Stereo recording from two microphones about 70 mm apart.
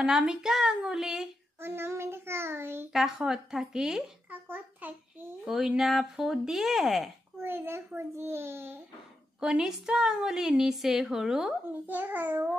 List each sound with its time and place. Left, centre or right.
0.0 s a child's voice: centre
1.6 s a child's voice: right
2.9 s speech: centre
4.3 s a child's voice: right
5.4 s speech: centre
7.3 s a child's voice: right
9.4 s a child's voice: centre
11.8 s a child's voice: right